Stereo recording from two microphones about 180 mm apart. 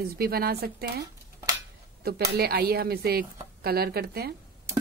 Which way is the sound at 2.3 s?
60° right (ahead or behind).